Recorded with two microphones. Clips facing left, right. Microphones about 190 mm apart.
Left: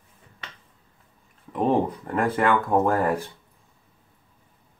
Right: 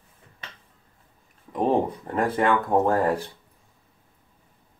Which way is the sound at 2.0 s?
30° right (ahead or behind).